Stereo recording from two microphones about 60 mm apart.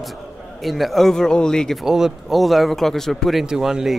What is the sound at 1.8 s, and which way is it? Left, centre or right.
Speech, centre.